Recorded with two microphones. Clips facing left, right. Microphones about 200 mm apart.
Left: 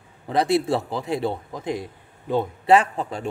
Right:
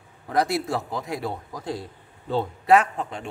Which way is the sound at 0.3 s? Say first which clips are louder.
Left 3 dB; 25° left (ahead or behind).